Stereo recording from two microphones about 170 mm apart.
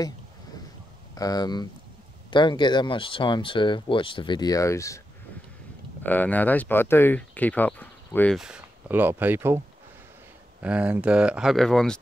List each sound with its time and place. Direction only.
1.1 s speech: 20° left (ahead or behind)
6.0 s speech: 10° left (ahead or behind)
8.4 s speech: 5° right (ahead or behind)
10.6 s speech: 5° right (ahead or behind)